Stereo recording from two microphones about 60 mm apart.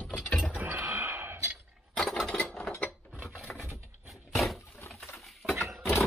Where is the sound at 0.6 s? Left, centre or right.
Right.